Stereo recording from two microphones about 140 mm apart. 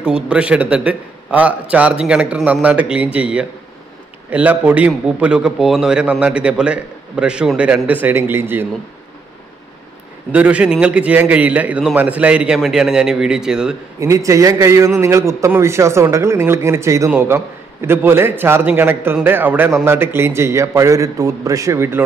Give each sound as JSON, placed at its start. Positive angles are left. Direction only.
{"t": 0.0, "sound": "a man's voice", "side_deg": -5}
{"t": 10.3, "sound": "a man's voice", "side_deg": -10}
{"t": 13.9, "sound": "a man's voice", "side_deg": -20}